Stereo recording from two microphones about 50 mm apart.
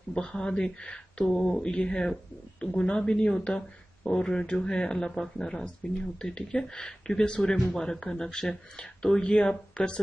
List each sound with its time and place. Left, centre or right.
0.1 s speech: left